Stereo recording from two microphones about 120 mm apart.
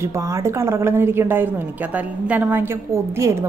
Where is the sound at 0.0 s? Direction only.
25° right (ahead or behind).